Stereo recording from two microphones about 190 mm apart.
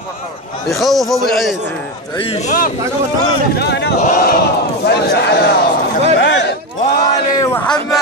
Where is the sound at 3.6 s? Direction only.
60° left (ahead or behind).